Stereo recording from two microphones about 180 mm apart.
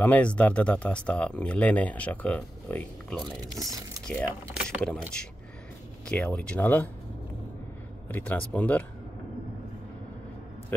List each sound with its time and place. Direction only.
0.0 s speech: 5° left (ahead or behind)
3.4 s speech: 20° right (ahead or behind)
4.1 s speech: 5° left (ahead or behind)
6.0 s speech: 5° left (ahead or behind)
8.1 s speech: 10° left (ahead or behind)